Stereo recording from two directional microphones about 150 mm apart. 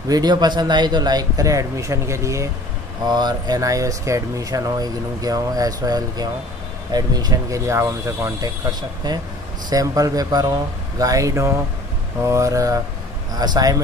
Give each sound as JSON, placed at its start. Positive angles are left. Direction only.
{"t": 0.1, "sound": "speech", "side_deg": -25}